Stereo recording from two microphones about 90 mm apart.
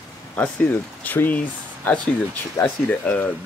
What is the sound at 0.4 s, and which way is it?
Speech, 20° left (ahead or behind).